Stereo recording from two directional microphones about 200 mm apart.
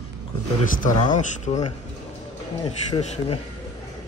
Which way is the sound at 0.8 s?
40° left (ahead or behind).